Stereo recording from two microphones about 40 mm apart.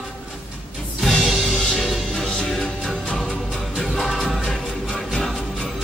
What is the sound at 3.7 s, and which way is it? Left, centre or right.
Music, centre.